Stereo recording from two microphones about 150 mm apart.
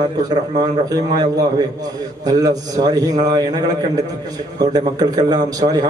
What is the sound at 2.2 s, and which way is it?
A man's voice, 25° right (ahead or behind).